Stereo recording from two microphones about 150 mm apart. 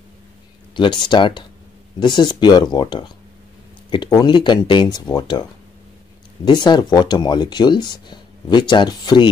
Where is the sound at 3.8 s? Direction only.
30° left (ahead or behind).